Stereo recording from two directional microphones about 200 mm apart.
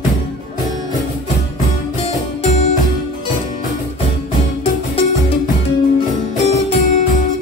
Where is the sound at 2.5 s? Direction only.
40° left (ahead or behind).